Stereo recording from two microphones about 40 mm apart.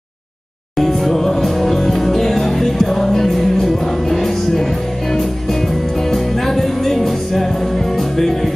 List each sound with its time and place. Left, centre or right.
0.7 s music: centre